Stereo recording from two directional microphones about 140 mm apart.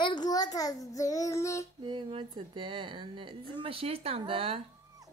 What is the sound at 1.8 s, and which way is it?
Speech, 35° right (ahead or behind).